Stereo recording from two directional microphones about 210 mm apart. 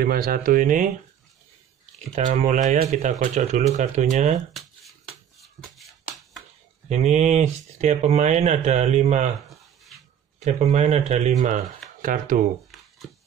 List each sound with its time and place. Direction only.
0.0 s speech: 45° right (ahead or behind)
2.1 s speech: 35° right (ahead or behind)
5.4 s a sound: centre (ahead or behind)
6.9 s speech: 35° right (ahead or behind)
10.4 s speech: 30° right (ahead or behind)
12.7 s a sound: centre (ahead or behind)